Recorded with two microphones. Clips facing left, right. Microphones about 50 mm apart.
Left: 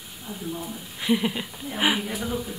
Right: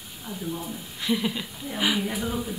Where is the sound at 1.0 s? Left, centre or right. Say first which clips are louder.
Left 2 dB; centre.